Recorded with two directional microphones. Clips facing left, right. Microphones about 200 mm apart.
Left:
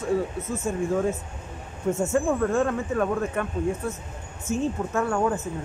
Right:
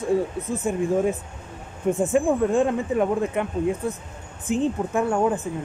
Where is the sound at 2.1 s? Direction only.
15° right (ahead or behind).